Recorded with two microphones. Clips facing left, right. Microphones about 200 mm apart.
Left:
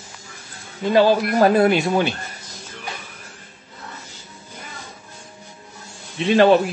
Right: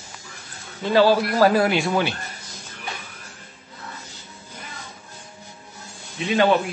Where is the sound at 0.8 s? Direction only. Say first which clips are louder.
Left 1 dB; 20° left (ahead or behind).